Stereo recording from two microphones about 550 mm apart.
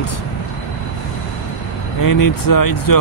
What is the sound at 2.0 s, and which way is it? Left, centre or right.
Speech, left.